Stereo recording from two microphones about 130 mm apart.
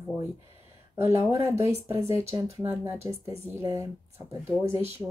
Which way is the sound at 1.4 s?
20° right (ahead or behind).